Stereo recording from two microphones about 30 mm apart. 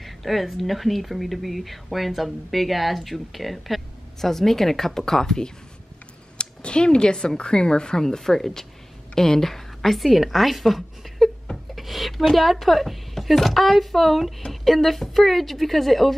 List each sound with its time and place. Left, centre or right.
0.0 s speech: centre
6.3 s speech: left
8.0 s a woman's voice: centre